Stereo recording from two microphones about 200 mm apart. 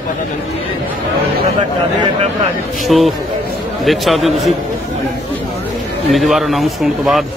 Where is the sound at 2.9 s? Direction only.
Centre (ahead or behind).